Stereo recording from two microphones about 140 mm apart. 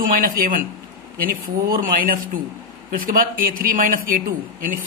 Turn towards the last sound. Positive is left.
turn(degrees=-85)